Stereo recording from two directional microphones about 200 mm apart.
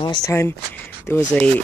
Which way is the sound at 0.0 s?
20° left (ahead or behind).